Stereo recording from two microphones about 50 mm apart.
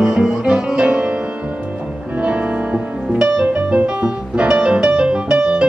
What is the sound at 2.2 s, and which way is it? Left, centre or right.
Music, right.